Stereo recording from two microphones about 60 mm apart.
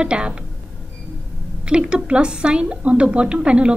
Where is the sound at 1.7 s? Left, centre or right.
Centre.